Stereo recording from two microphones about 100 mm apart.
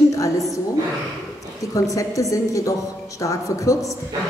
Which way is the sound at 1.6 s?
35° left (ahead or behind).